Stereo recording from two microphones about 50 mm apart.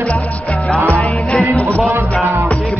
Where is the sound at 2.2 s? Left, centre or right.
Right.